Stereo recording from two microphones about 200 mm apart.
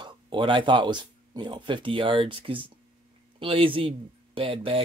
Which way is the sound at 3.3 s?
25° right (ahead or behind).